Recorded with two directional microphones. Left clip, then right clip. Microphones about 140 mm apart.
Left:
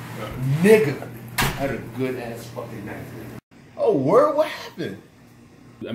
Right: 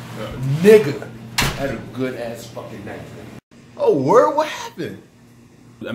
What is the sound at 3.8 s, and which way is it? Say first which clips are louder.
A man's voice: right 3 dB; 15° right (ahead or behind).